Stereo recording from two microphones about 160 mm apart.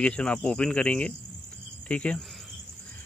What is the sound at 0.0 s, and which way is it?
Speech, 5° left (ahead or behind).